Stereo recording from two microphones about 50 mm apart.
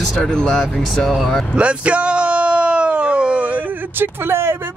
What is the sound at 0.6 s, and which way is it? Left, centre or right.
Speech, centre.